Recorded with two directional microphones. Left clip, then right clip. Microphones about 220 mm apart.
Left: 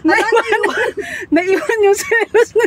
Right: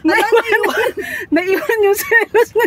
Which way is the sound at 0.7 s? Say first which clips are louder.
Right 1 dB; 20° right (ahead or behind).